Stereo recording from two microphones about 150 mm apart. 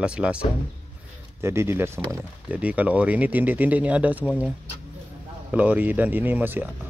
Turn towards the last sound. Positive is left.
turn(degrees=-15)  # may be behind; listen again after turning